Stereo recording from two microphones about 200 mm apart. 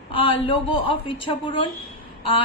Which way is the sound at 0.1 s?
25° left (ahead or behind).